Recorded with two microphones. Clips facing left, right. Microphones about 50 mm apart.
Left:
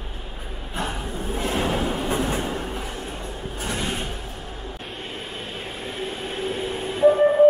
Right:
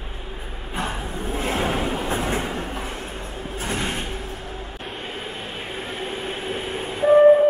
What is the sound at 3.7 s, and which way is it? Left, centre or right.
Vehicle, right.